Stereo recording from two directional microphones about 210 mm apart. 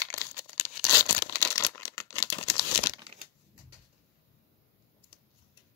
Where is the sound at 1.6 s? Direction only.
15° left (ahead or behind).